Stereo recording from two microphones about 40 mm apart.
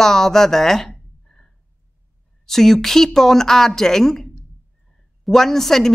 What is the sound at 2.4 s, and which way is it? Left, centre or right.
Speech, centre.